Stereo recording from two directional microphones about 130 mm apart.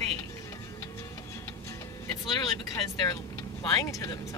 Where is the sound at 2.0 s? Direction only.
30° left (ahead or behind).